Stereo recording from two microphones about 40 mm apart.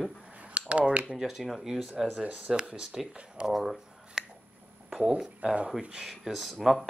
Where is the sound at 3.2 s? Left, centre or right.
Right.